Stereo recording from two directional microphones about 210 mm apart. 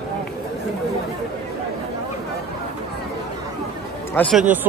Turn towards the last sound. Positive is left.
turn(degrees=0)  # may be behind; listen again after turning